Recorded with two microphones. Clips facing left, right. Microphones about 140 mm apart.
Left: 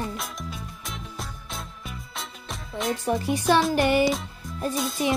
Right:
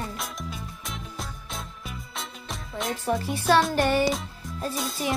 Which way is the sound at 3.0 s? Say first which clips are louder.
Left 1 dB; 15° left (ahead or behind).